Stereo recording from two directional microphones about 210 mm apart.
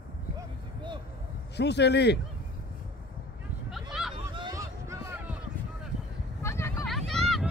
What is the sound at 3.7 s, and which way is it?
Vehicle, centre (ahead or behind).